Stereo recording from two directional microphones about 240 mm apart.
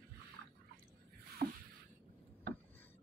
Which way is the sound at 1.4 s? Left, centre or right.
Right.